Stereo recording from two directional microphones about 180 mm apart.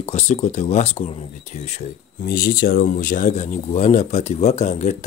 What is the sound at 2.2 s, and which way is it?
Speech, 55° left (ahead or behind).